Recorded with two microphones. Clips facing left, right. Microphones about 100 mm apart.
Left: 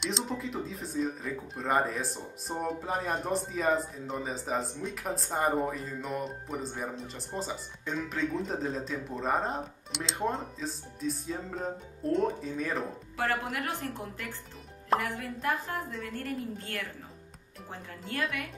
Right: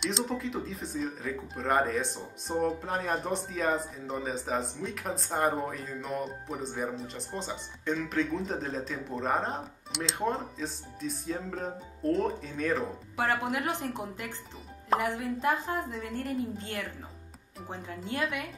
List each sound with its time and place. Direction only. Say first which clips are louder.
0.0 s speech: right 2 dB; centre (ahead or behind)
13.2 s a woman's voice: right 2 dB; 20° right (ahead or behind)